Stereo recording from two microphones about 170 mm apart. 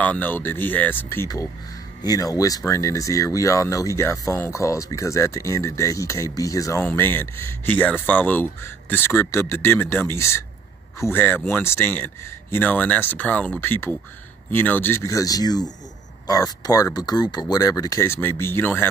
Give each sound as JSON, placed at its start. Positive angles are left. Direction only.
{"t": 0.0, "sound": "speech", "side_deg": 10}